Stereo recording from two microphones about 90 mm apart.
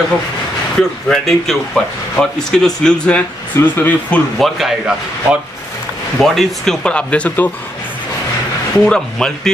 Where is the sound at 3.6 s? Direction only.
25° left (ahead or behind).